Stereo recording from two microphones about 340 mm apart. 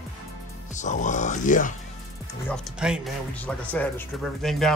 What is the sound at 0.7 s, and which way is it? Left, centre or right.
Speech, left.